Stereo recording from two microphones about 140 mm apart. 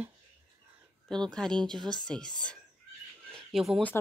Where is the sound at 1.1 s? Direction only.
5° left (ahead or behind).